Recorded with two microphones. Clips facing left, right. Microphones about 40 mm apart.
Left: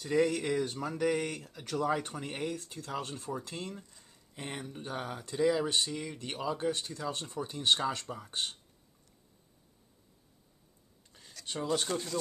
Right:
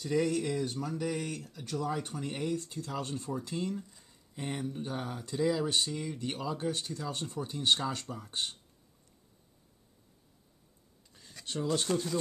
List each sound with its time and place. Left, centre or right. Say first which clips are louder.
0.0 s speech: left 1 dB; centre
0.4 s speech: left 1 dB; left
1.0 s speech: left 6 dB; left
1.3 s speech: left 1 dB; left
2.1 s speech: right 2 dB; centre
11.1 s a sound: even; centre
11.4 s speech: even; centre